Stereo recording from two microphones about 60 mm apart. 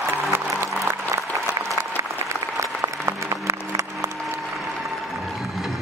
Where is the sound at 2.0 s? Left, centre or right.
Right.